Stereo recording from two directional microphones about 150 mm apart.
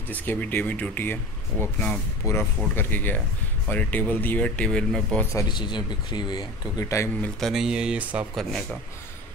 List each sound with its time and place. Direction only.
0.1 s speech: 10° left (ahead or behind)
5.3 s speech: 25° left (ahead or behind)
7.3 s speech: centre (ahead or behind)